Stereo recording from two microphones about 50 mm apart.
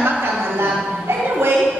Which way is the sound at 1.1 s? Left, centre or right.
Right.